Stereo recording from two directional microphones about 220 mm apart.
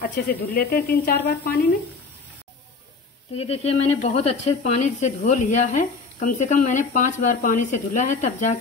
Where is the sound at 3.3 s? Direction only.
25° left (ahead or behind).